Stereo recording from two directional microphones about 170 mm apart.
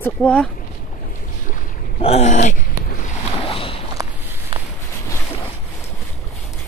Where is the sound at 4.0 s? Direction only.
25° right (ahead or behind).